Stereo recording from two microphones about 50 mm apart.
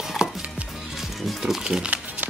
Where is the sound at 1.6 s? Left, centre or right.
Centre.